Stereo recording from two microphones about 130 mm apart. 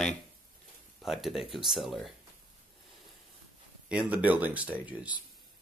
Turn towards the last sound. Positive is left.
turn(degrees=-10)  # may be behind; listen again after turning